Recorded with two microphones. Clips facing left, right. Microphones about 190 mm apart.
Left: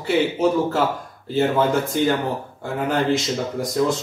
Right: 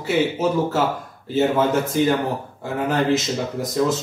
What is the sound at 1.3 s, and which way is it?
Speech, 5° right (ahead or behind).